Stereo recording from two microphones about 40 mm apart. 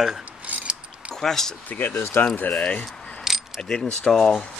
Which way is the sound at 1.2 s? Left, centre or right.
Centre.